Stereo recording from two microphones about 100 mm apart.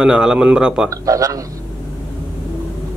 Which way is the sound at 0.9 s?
35° right (ahead or behind).